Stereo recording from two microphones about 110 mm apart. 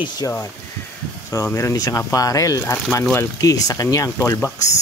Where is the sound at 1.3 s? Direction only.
30° left (ahead or behind).